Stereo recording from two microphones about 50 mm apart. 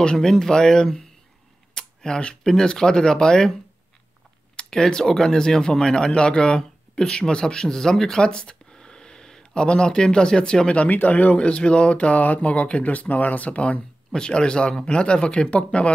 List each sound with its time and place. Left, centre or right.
0.0 s speech: centre
4.6 s speech: centre
10.7 s speech: left